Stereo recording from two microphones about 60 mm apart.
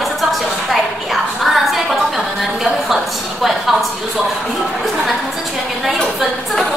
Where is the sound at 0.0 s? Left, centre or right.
Centre.